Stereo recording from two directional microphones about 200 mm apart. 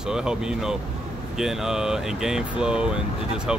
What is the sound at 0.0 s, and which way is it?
Speech, 5° right (ahead or behind).